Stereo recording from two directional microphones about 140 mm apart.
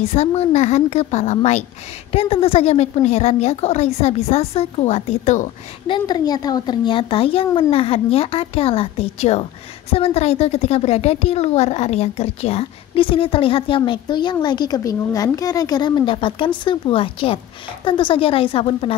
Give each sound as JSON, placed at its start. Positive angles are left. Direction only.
{"t": 0.1, "sound": "a woman's voice", "side_deg": 50}
{"t": 5.9, "sound": "a woman's voice", "side_deg": 30}